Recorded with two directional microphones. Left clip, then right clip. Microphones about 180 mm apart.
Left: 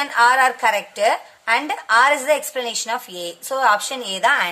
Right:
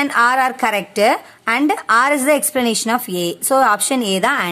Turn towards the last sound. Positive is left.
turn(degrees=-40)  # may be behind; listen again after turning